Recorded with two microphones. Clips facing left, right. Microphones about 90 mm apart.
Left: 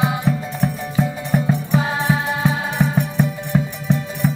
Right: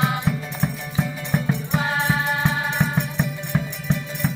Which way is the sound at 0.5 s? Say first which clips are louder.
Left 5 dB; 10° left (ahead or behind).